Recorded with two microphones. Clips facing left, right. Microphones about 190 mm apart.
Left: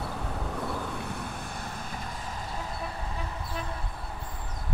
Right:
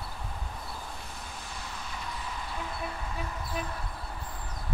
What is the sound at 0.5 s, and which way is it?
Vehicle, 70° left (ahead or behind).